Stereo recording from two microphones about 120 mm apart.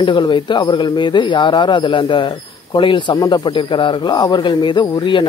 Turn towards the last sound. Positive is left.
turn(degrees=40)  # may be behind; listen again after turning